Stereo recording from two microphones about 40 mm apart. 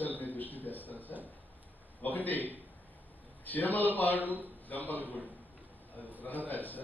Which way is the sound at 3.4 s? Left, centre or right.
Left.